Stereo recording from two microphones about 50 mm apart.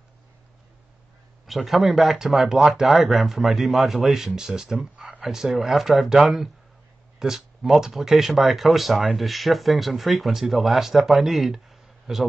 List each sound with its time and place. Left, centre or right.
1.4 s speech: centre
4.9 s a sound: right
5.2 s speech: centre